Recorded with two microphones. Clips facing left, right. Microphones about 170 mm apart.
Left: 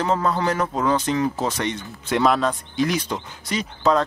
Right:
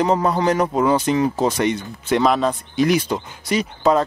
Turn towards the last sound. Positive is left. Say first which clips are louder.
# right 3 dB
turn(degrees=-10)  # may be behind; listen again after turning